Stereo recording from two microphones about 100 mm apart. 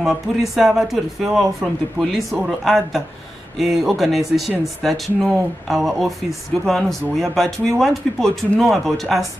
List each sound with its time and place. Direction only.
0.0 s speech: centre (ahead or behind)